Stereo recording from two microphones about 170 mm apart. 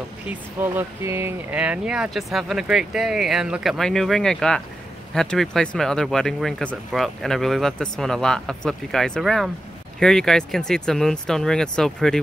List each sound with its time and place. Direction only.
0.3 s speech: 15° right (ahead or behind); by 12.2 s 5° left (ahead or behind)